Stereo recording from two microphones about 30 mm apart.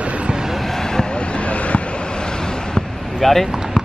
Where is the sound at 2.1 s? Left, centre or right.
Left.